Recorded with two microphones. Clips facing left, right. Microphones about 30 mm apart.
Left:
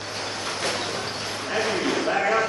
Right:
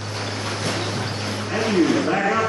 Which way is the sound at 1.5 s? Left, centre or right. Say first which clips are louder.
Right 4 dB; centre.